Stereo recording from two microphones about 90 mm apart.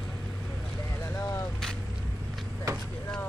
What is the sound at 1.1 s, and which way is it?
Vehicle, 35° left (ahead or behind).